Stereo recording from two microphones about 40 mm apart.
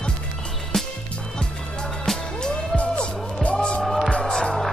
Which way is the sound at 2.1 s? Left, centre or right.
Centre.